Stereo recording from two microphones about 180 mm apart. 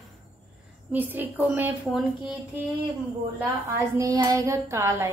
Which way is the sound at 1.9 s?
Centre (ahead or behind).